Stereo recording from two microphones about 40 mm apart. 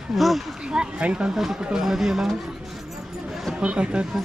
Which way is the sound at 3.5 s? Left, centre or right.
Right.